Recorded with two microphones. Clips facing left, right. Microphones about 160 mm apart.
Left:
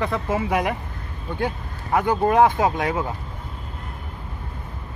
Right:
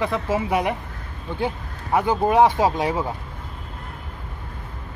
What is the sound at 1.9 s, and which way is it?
Speech, 10° right (ahead or behind).